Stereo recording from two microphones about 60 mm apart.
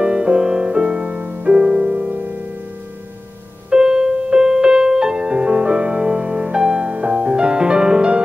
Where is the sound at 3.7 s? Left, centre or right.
Centre.